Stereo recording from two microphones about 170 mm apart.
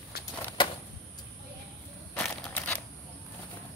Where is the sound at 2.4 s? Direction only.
10° left (ahead or behind).